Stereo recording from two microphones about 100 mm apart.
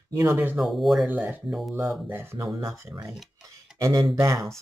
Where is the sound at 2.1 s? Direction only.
25° right (ahead or behind).